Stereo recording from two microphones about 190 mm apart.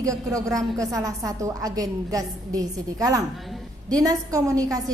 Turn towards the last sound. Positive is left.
turn(degrees=-20)  # may be behind; listen again after turning